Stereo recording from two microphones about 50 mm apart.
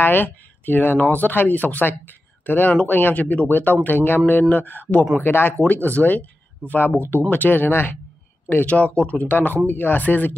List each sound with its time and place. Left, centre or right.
0.0 s speech: left
3.2 s speech: left
3.4 s speech: left
5.7 s speech: left
7.2 s speech: left
8.5 s speech: left